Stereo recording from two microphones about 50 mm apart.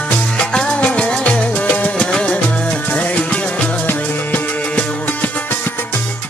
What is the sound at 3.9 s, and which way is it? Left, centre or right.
Music, left.